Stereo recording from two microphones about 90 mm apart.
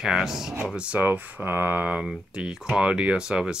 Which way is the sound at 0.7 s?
15° right (ahead or behind).